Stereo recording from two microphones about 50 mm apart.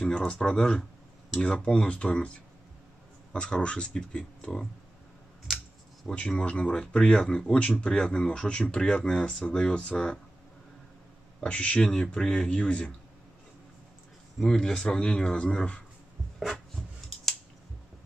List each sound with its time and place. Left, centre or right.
0.4 s speech: centre
3.3 s speech: centre
6.1 s speech: centre
11.4 s speech: left
14.4 s speech: centre
16.3 s a sound: centre
17.1 s scissors: centre